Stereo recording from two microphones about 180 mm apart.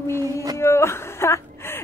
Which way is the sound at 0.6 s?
15° left (ahead or behind).